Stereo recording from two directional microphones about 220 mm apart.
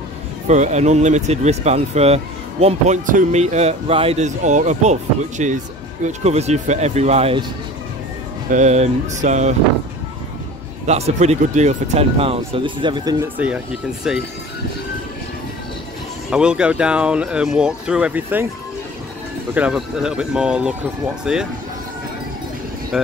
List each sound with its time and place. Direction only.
0.5 s speech: 30° right (ahead or behind)
8.5 s speech: 30° right (ahead or behind)
10.9 s speech: 30° right (ahead or behind)
14.0 s speech: 5° right (ahead or behind)
16.3 s speech: 5° right (ahead or behind)
19.5 s speech: 5° right (ahead or behind)